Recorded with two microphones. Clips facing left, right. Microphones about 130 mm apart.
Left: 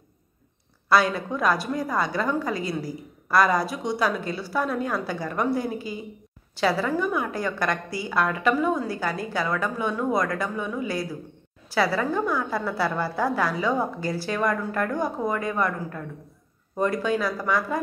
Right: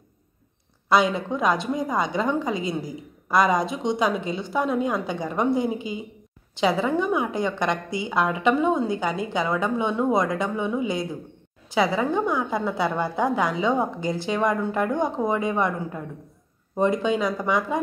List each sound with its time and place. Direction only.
0.8 s a woman's voice: 20° right (ahead or behind)